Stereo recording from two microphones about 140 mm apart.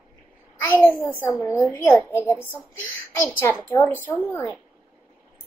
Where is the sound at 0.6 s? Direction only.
15° left (ahead or behind).